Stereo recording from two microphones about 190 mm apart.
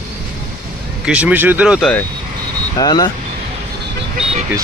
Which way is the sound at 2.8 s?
20° left (ahead or behind).